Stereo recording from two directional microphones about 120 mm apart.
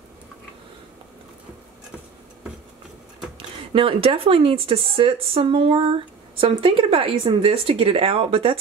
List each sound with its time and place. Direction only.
3.3 s speech: 50° right (ahead or behind)